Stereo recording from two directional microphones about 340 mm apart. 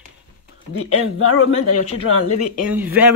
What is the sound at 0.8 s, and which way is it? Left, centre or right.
Speech, left.